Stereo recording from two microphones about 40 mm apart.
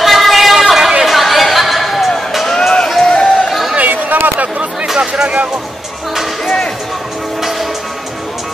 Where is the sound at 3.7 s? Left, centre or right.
Right.